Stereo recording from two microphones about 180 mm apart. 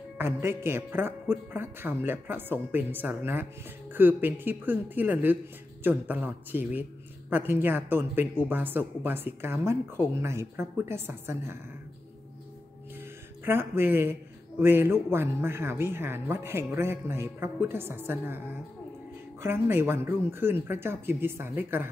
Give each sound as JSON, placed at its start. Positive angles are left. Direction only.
{"t": 0.2, "sound": "a woman's voice", "side_deg": -15}
{"t": 13.5, "sound": "a woman's voice", "side_deg": -10}
{"t": 19.4, "sound": "a woman's voice", "side_deg": -15}